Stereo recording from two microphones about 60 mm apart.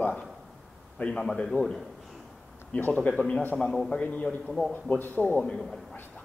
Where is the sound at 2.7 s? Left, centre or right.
Left.